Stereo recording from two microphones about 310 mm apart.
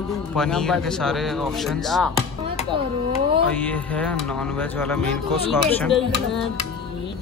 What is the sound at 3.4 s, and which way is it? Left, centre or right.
Speech, centre.